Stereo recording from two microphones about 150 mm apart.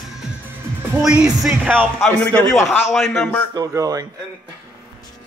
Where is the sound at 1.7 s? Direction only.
5° left (ahead or behind).